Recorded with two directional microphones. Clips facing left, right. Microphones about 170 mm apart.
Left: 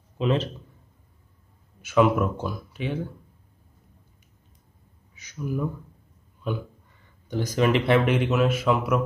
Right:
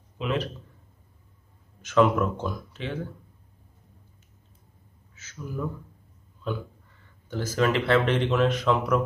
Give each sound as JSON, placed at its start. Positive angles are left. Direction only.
{"t": 0.2, "sound": "a man's voice", "side_deg": 30}
{"t": 1.8, "sound": "speech", "side_deg": 10}
{"t": 5.1, "sound": "a sound", "side_deg": 15}
{"t": 6.5, "sound": "speech", "side_deg": 15}